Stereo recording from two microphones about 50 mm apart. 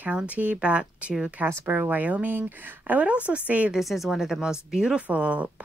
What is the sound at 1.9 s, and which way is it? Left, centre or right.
Speech, right.